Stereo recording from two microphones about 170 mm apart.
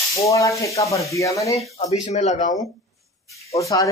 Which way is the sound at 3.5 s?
20° left (ahead or behind).